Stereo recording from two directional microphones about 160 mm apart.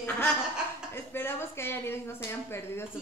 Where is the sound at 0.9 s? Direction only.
15° left (ahead or behind).